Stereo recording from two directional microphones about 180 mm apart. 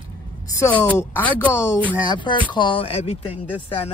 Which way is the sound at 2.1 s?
25° left (ahead or behind).